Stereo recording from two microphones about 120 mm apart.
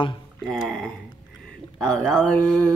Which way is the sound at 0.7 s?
5° left (ahead or behind).